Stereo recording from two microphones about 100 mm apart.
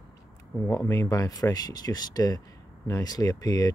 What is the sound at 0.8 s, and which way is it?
Speech, 30° left (ahead or behind).